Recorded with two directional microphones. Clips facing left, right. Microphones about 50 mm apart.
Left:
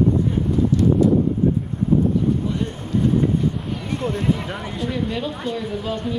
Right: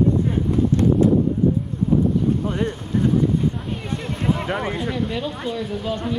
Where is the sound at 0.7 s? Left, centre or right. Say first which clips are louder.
Even; right.